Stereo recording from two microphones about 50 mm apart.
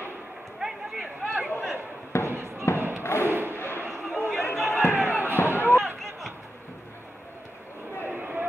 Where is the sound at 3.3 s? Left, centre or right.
Right.